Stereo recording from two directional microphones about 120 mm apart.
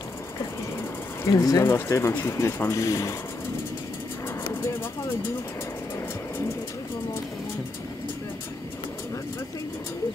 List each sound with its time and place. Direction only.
1.2 s speech: 30° left (ahead or behind)